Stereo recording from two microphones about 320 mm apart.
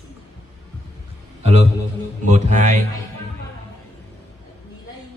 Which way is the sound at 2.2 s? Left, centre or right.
Right.